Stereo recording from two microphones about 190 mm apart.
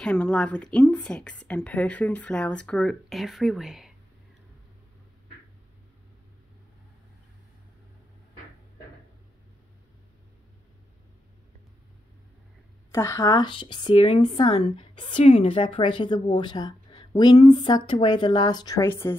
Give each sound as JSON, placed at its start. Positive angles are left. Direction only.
{"t": 0.0, "sound": "a woman's voice", "side_deg": 5}
{"t": 12.9, "sound": "speech", "side_deg": 15}